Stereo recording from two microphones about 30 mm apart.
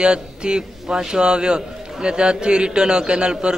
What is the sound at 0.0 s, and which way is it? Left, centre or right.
A man's voice, right.